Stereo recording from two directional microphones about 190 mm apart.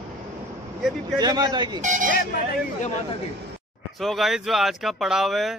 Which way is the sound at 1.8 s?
40° right (ahead or behind).